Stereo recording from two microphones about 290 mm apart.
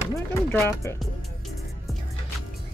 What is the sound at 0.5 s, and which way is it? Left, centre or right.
Speech, centre.